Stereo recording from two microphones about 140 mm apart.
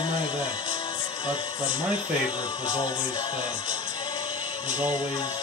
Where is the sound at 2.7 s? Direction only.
35° left (ahead or behind).